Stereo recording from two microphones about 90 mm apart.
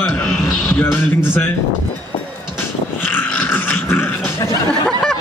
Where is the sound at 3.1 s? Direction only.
20° left (ahead or behind).